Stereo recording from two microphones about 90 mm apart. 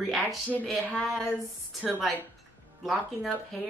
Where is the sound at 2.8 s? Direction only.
Centre (ahead or behind).